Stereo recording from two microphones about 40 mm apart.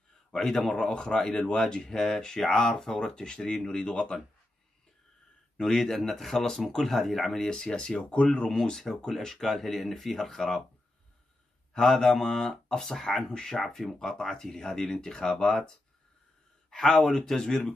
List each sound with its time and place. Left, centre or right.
0.3 s speech: centre
5.6 s speech: centre
7.4 s speech: centre
8.6 s speech: centre
11.7 s speech: centre
13.6 s speech: centre
16.9 s speech: centre